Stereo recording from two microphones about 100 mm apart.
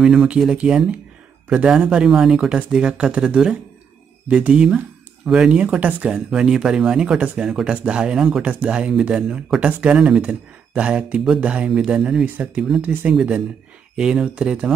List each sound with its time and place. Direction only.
0.0 s speech: 5° right (ahead or behind)